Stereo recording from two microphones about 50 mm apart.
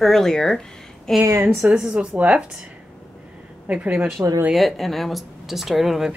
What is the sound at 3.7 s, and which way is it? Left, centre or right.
Speech, right.